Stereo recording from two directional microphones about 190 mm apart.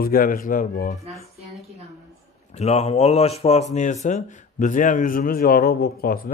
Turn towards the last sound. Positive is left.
turn(degrees=50)  # may be behind; listen again after turning